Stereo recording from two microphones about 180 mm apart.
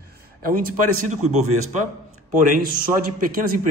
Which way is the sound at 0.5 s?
50° right (ahead or behind).